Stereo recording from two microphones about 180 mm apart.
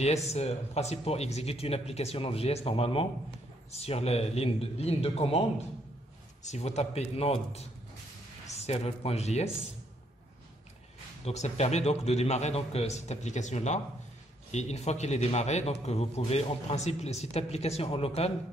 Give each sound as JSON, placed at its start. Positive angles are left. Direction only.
{"t": 0.0, "sound": "a man's voice", "side_deg": 35}
{"t": 6.4, "sound": "a man's voice", "side_deg": 40}
{"t": 11.2, "sound": "a man's voice", "side_deg": 40}